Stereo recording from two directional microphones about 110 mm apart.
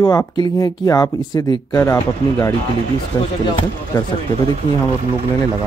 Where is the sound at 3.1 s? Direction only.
40° left (ahead or behind).